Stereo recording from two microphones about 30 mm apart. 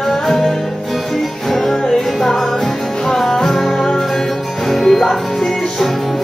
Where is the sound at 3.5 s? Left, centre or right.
Centre.